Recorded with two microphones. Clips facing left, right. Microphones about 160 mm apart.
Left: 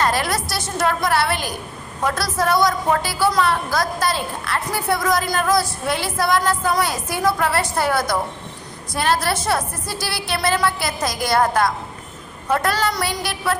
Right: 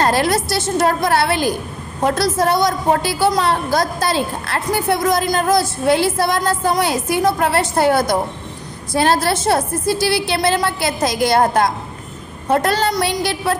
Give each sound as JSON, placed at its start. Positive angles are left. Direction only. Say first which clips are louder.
{"t": 0.0, "sound": "a woman's voice", "louder": "right 5 dB", "side_deg": -30}